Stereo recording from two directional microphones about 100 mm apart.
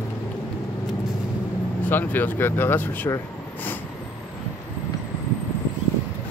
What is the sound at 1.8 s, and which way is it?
Speech, 20° left (ahead or behind).